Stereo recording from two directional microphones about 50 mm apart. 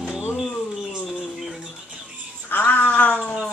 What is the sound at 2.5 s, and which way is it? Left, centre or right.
Cat, left.